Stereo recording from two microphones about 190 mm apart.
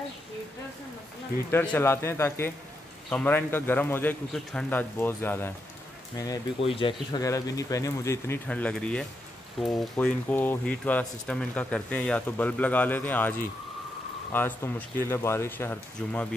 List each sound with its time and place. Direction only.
1.5 s speech: 10° left (ahead or behind)
14.3 s speech: 10° left (ahead or behind)